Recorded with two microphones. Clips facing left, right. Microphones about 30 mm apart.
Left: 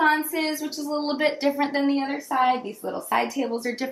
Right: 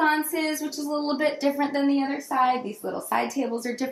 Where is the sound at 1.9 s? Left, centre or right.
Centre.